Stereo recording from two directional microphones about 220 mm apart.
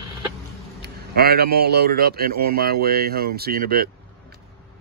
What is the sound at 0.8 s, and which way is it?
Speech, 45° right (ahead or behind).